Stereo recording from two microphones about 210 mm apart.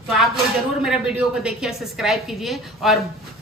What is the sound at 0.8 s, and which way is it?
A woman's voice, 5° right (ahead or behind).